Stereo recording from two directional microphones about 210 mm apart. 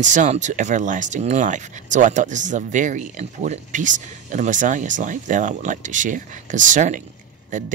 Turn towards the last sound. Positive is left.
turn(degrees=-35)  # may be behind; listen again after turning